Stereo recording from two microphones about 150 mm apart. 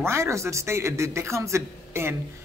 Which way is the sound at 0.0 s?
20° right (ahead or behind).